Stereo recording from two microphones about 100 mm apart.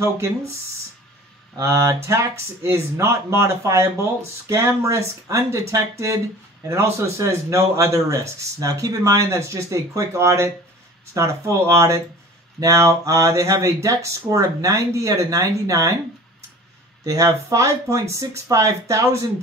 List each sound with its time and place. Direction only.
1.6 s speech: 25° right (ahead or behind)
17.0 s speech: 35° right (ahead or behind)